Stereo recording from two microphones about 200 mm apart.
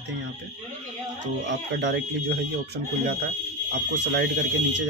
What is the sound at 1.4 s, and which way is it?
Speech, 65° right (ahead or behind).